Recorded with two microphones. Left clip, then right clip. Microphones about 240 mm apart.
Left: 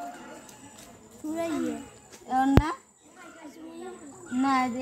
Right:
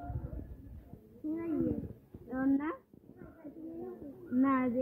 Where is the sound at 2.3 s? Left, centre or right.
Left.